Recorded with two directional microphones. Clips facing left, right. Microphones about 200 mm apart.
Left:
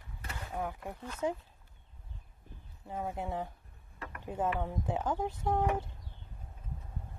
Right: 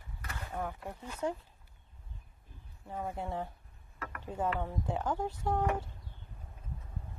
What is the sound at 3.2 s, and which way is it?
Speech, 15° left (ahead or behind).